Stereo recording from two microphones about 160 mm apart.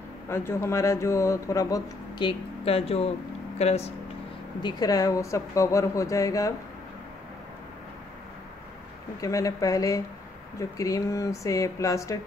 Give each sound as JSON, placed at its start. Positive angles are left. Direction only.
{"t": 0.3, "sound": "speech", "side_deg": 15}
{"t": 4.6, "sound": "speech", "side_deg": 25}
{"t": 9.2, "sound": "speech", "side_deg": 20}